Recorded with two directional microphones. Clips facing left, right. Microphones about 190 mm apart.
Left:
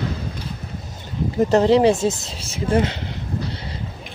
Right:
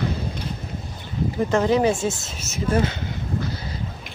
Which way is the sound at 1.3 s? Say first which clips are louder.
Left 5 dB; 40° left (ahead or behind).